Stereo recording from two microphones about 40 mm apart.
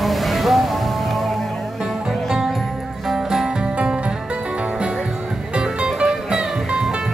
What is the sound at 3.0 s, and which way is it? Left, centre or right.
Music, centre.